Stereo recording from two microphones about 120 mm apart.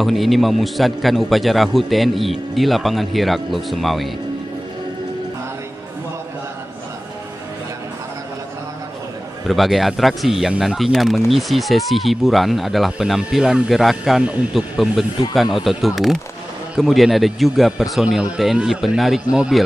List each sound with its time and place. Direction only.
0.0 s speech: centre (ahead or behind)
9.5 s a man's voice: centre (ahead or behind)